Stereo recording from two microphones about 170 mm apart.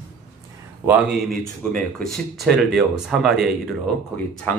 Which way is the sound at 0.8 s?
10° right (ahead or behind).